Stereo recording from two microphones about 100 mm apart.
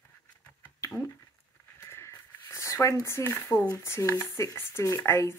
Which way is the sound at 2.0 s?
25° left (ahead or behind).